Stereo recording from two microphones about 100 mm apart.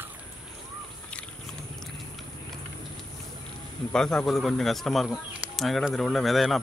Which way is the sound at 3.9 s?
5° left (ahead or behind).